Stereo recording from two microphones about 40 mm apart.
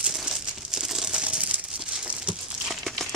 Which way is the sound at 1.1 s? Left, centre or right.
Right.